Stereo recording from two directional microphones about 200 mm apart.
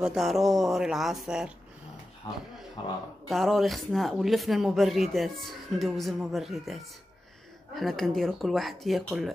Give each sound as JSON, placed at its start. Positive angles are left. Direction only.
{"t": 0.0, "sound": "speech", "side_deg": 0}
{"t": 2.8, "sound": "speech", "side_deg": 25}
{"t": 3.3, "sound": "speech", "side_deg": 0}